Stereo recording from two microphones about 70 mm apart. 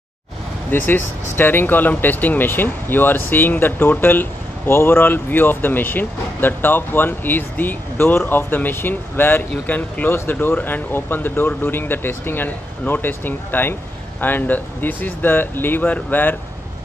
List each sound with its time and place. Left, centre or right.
0.7 s speech: left